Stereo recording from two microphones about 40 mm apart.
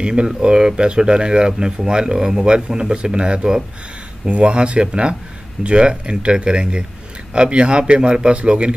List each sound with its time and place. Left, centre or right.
0.0 s speech: right